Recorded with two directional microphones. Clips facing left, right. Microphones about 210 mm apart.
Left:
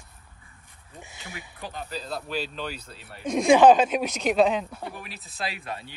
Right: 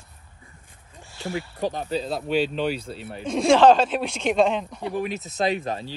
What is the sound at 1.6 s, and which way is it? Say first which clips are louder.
Speech: right 8 dB; 40° right (ahead or behind).